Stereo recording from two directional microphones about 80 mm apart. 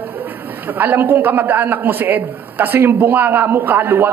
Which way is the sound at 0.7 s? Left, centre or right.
Right.